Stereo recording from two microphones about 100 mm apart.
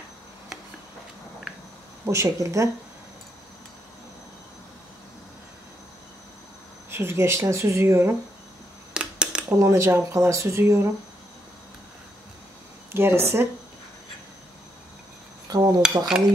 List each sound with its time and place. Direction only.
2.0 s speech: 30° right (ahead or behind)
6.9 s speech: 25° right (ahead or behind)
8.9 s a sound: 10° right (ahead or behind)
9.6 s speech: 30° right (ahead or behind)
12.9 s speech: 25° right (ahead or behind)
15.5 s cutlery: 40° right (ahead or behind)
16.1 s dishes: 5° right (ahead or behind)